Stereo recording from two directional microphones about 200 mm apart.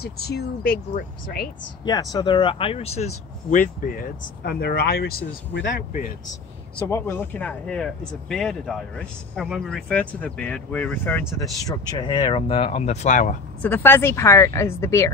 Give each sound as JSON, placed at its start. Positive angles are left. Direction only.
{"t": 0.0, "sound": "speech", "side_deg": 50}
{"t": 1.9, "sound": "speech", "side_deg": 20}
{"t": 6.9, "sound": "speech", "side_deg": 10}
{"t": 13.6, "sound": "speech", "side_deg": 10}